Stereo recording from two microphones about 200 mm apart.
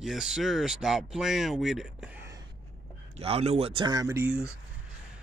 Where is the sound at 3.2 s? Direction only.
30° right (ahead or behind); by 4.5 s 10° right (ahead or behind).